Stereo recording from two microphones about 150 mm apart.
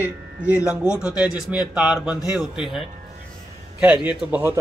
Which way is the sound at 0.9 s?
5° right (ahead or behind).